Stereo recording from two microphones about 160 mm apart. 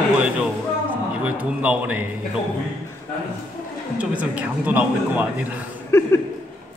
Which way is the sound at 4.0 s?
10° right (ahead or behind).